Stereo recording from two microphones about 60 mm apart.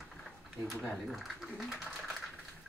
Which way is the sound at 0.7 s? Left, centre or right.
Centre.